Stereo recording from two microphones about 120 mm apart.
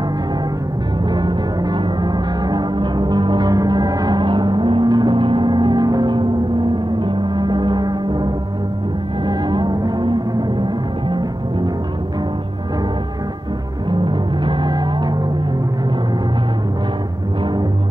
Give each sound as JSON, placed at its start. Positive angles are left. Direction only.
{"t": 1.1, "sound": "music", "side_deg": -40}
{"t": 13.8, "sound": "music", "side_deg": -40}